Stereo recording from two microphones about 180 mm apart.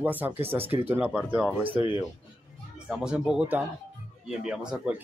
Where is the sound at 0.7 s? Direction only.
10° right (ahead or behind).